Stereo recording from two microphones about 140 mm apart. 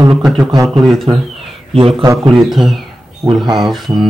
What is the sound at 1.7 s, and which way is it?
Speech, 40° right (ahead or behind).